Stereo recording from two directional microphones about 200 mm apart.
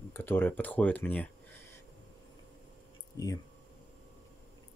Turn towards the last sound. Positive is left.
turn(degrees=15)  # may be behind; listen again after turning